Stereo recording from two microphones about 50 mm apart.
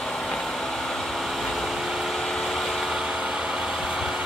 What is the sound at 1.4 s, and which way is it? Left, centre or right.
Vehicle, centre.